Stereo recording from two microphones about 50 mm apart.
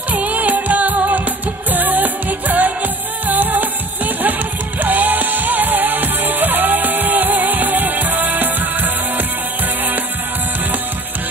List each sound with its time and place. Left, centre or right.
0.1 s music: right